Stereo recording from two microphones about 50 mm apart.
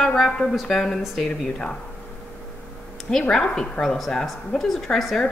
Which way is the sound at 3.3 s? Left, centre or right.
Centre.